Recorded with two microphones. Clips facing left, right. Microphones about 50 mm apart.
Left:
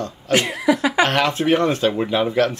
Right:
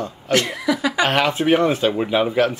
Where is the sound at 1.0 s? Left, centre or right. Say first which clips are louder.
Right 1 dB; centre.